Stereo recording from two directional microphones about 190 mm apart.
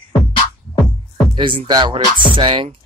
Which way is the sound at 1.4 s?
25° right (ahead or behind).